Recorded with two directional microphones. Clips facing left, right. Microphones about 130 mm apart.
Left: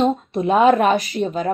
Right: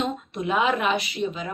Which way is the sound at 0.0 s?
35° left (ahead or behind).